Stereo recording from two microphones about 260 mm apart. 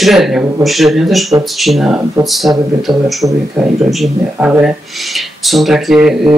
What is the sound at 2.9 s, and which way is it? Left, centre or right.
Speech, centre.